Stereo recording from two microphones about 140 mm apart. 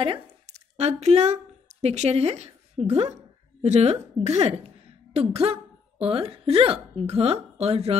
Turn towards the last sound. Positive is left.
turn(degrees=-45)  # may be behind; listen again after turning